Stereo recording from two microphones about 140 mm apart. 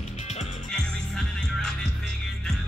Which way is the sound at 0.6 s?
5° left (ahead or behind).